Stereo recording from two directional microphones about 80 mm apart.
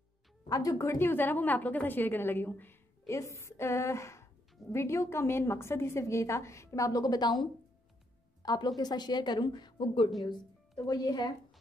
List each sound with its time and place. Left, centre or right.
0.5 s a woman's voice: left
3.1 s a woman's voice: left
10.9 s a woman's voice: left